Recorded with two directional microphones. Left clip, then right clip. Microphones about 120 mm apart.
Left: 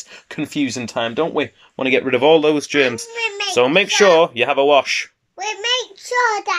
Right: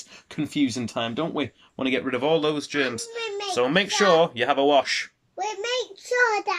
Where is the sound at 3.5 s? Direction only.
20° left (ahead or behind).